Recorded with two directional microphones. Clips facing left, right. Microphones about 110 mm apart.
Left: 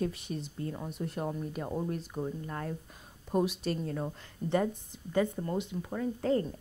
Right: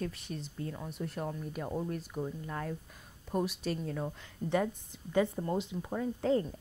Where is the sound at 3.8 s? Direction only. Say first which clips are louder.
Left 2 dB; centre (ahead or behind).